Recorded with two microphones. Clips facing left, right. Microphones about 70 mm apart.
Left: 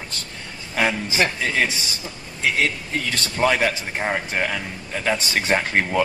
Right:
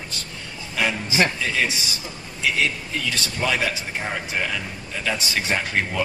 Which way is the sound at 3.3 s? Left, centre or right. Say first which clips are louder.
Left 5 dB; left.